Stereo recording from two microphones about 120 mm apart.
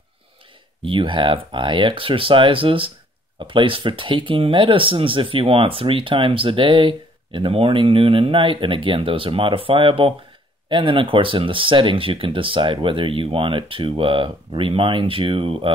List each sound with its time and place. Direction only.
0.8 s speech: 45° right (ahead or behind)